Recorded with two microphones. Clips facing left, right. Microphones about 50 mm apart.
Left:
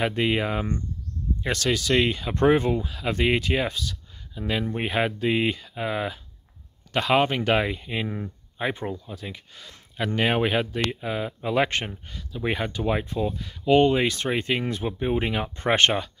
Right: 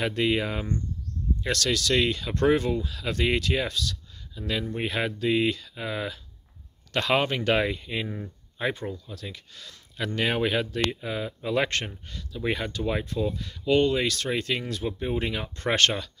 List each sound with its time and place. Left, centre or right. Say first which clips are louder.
0.0 s speech: left 1 dB; centre
13.7 s speech: left 4 dB; left